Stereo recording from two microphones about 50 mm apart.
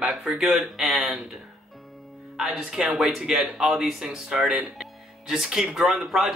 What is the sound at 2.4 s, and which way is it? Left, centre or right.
Speech, centre.